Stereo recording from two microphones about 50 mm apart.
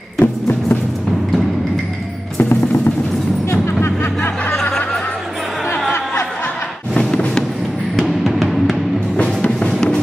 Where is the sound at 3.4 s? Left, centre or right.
Left.